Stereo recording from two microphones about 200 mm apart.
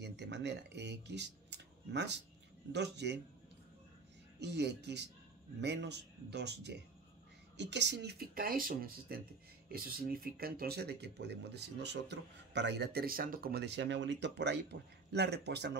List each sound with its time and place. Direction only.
0.0 s speech: 60° right (ahead or behind)
4.4 s speech: 60° right (ahead or behind)